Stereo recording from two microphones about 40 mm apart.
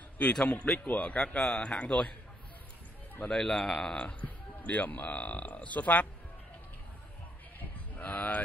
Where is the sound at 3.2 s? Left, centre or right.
Centre.